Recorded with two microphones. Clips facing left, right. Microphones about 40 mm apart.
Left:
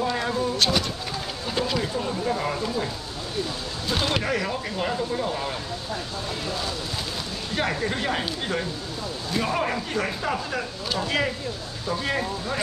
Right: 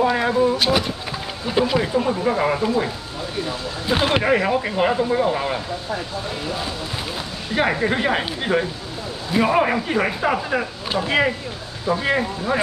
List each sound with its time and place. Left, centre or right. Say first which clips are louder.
0.0 s speech: right 7 dB; right
7.5 s speech: right 7 dB; right